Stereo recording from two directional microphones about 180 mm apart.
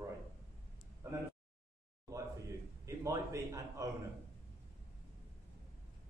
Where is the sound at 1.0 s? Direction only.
15° right (ahead or behind).